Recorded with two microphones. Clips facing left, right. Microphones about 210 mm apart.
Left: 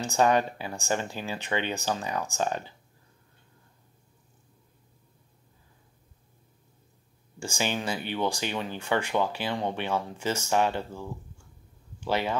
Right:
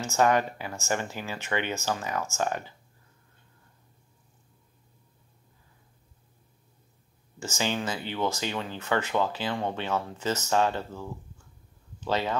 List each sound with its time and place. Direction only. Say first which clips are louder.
0.0 s speech: even; 15° left (ahead or behind)
7.3 s speech: even; 15° left (ahead or behind)